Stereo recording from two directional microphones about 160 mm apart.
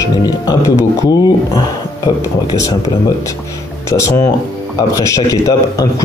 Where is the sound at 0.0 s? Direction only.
25° left (ahead or behind).